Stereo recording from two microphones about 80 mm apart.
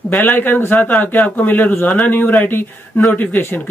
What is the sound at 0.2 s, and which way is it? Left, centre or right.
Speech, left.